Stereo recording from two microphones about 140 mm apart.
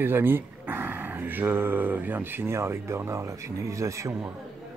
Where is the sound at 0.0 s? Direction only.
15° right (ahead or behind).